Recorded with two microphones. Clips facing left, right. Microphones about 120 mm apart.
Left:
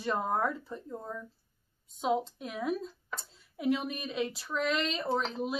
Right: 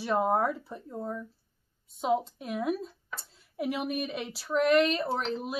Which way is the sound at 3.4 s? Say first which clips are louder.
Left 2 dB; 5° right (ahead or behind).